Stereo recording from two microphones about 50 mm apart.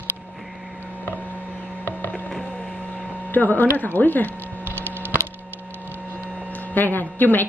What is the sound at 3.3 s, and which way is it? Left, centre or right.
A woman's voice, left.